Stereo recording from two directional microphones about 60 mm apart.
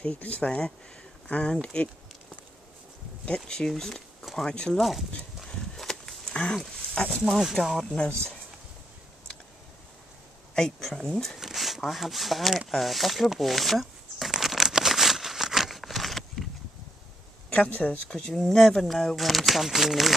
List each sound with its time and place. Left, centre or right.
0.0 s speech: left
3.3 s speech: centre
5.5 s a sound: centre
7.0 s speech: centre
7.2 s speech: centre
7.9 s speech: centre
10.5 s speech: centre
10.9 s a sound: centre
17.8 s speech: centre